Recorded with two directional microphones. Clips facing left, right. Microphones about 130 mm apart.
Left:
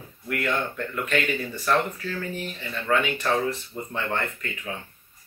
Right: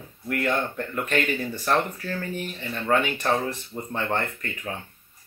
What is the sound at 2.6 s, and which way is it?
Speech, 40° right (ahead or behind).